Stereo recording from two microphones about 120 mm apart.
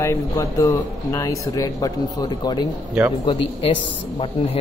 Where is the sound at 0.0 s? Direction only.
25° left (ahead or behind).